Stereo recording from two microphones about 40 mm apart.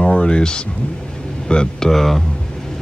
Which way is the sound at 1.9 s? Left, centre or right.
Centre.